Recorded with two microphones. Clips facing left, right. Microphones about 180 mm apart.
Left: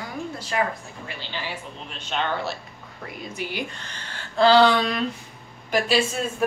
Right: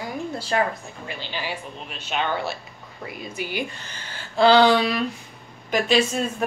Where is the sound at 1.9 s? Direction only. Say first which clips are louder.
Right 1 dB; 10° right (ahead or behind).